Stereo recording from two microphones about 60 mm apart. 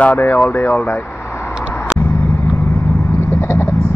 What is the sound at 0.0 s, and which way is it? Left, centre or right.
Speech, left.